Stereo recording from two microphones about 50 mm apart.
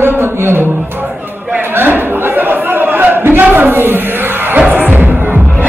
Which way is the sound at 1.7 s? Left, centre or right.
Right.